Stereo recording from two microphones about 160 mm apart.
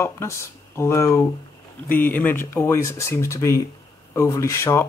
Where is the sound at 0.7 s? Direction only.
15° left (ahead or behind).